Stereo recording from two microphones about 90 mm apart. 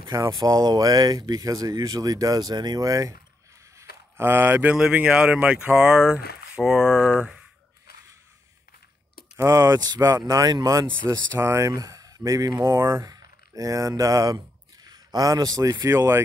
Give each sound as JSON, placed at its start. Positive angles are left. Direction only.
{"t": 0.2, "sound": "speech", "side_deg": -50}
{"t": 4.2, "sound": "speech", "side_deg": -25}
{"t": 9.4, "sound": "speech", "side_deg": -40}
{"t": 9.9, "sound": "speech", "side_deg": -35}
{"t": 12.7, "sound": "speech", "side_deg": -30}
{"t": 13.1, "sound": "speech", "side_deg": -40}